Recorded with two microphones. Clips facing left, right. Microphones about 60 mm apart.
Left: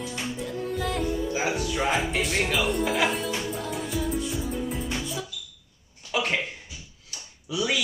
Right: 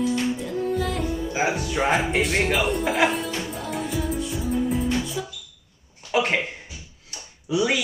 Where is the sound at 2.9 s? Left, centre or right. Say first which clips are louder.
Right 3 dB; centre.